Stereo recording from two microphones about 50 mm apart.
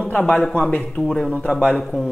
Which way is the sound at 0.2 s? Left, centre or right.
Centre.